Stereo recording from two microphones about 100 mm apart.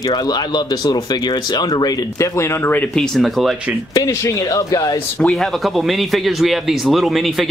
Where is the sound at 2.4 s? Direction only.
20° left (ahead or behind).